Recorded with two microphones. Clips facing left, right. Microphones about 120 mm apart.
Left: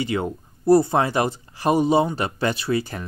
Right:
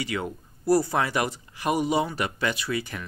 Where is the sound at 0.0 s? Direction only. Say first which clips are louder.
Left 6 dB; 25° left (ahead or behind).